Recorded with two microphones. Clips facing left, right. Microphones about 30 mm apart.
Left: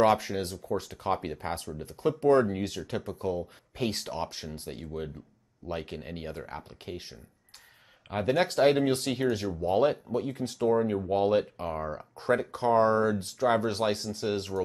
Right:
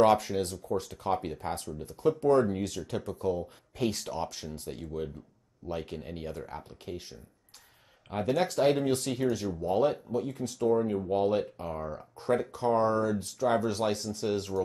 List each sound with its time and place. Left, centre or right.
0.2 s speech: centre